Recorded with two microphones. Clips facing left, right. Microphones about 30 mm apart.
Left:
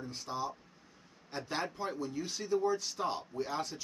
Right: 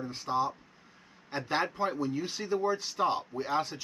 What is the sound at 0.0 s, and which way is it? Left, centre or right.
Speech, right.